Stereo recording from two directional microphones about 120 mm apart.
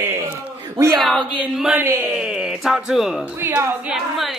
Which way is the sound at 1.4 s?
10° right (ahead or behind).